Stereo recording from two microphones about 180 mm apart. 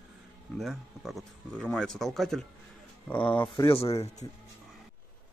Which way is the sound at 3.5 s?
20° left (ahead or behind).